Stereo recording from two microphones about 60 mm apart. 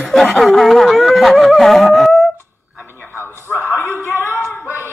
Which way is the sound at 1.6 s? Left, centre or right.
Centre.